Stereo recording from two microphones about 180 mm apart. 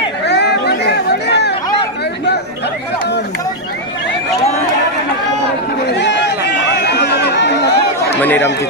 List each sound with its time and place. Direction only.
0.3 s chatter: 65° left (ahead or behind)
5.9 s chatter: 75° left (ahead or behind)
8.2 s a sound: 10° left (ahead or behind)